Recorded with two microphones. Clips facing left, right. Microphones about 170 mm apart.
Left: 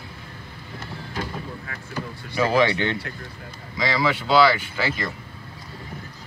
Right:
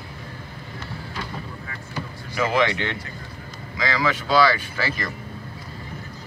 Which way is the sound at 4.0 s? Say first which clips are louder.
Left 1 dB; 25° left (ahead or behind).